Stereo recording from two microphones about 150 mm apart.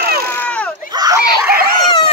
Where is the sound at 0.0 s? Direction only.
90° right.